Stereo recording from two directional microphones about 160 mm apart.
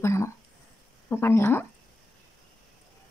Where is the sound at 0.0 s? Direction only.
15° left (ahead or behind).